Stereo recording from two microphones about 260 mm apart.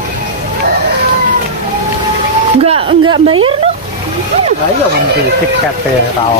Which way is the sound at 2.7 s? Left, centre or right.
Right.